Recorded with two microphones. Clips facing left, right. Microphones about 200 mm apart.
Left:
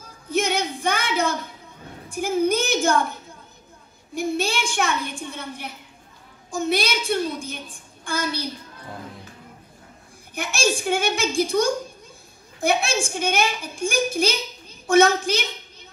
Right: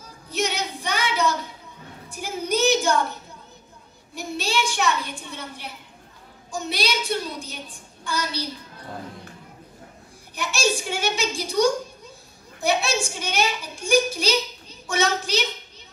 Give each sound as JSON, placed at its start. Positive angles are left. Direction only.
{"t": 0.3, "sound": "a sound", "side_deg": 50}
{"t": 2.0, "sound": "child singing", "side_deg": 50}
{"t": 4.1, "sound": "a woman's voice", "side_deg": 50}
{"t": 10.3, "sound": "a woman's voice", "side_deg": 50}